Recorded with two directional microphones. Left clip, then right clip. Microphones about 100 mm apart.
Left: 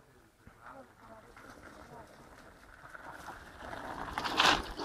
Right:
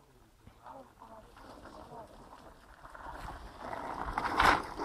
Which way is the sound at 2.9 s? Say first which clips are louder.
Right 2 dB; 35° left (ahead or behind).